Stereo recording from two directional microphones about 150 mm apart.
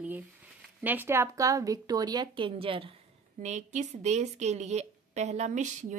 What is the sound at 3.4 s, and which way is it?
A woman's voice, 50° right (ahead or behind).